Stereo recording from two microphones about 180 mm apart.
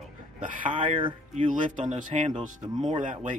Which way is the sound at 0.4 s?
45° right (ahead or behind).